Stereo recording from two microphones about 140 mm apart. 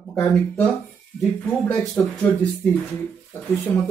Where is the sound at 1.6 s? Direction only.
Centre (ahead or behind).